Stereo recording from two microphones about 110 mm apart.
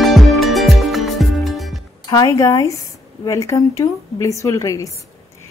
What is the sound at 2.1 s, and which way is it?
A woman's voice, 30° left (ahead or behind).